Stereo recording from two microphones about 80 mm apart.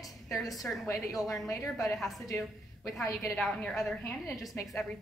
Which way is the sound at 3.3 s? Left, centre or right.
Centre.